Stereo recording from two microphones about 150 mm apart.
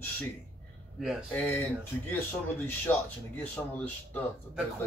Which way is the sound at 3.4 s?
10° left (ahead or behind).